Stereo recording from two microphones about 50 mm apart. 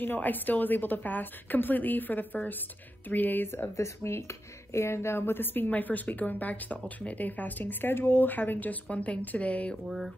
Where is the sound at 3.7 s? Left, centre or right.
Left.